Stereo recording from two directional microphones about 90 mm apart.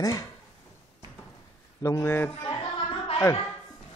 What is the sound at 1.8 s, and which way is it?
Speech, 30° left (ahead or behind).